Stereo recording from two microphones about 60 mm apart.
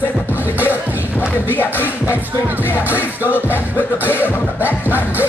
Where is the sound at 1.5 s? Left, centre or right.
Left.